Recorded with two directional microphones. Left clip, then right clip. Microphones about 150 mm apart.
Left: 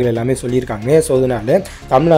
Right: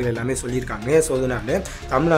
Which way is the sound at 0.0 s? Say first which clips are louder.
Left 7 dB; 30° left (ahead or behind).